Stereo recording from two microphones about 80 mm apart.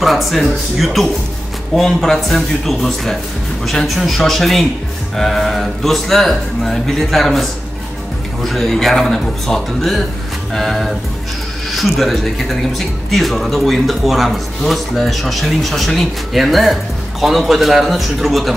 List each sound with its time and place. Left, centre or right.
0.0 s speech: centre
8.5 s speech: centre